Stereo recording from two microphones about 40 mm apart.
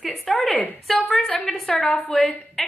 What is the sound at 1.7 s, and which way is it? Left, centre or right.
Speech, left.